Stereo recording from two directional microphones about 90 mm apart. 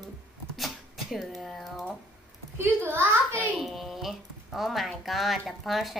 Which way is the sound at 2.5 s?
25° right (ahead or behind).